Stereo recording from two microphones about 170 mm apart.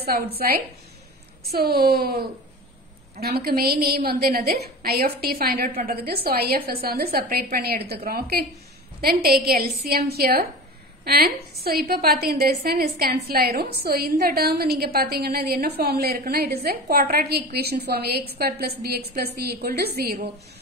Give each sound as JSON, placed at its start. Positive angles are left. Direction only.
{"t": 1.5, "sound": "a woman's voice", "side_deg": -65}